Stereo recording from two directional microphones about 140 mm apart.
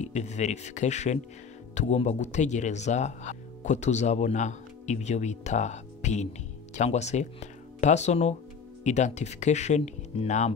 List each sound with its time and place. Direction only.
0.0 s speech: 55° left (ahead or behind)